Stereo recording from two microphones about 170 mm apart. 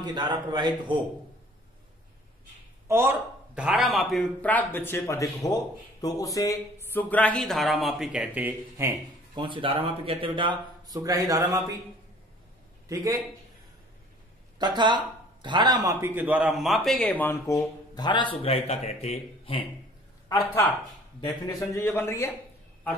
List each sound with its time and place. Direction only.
0.0 s speech: 25° right (ahead or behind)
2.9 s speech: 15° right (ahead or behind)
9.3 s speech: 30° right (ahead or behind)
12.8 s a man's voice: 20° right (ahead or behind)
14.6 s a man's voice: 25° right (ahead or behind); by 17.3 s centre (ahead or behind)
17.3 s speech: 15° left (ahead or behind); by 19.6 s 35° left (ahead or behind)
20.2 s speech: 20° left (ahead or behind)